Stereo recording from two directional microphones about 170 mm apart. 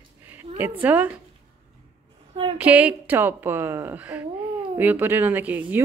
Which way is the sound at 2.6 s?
10° right (ahead or behind).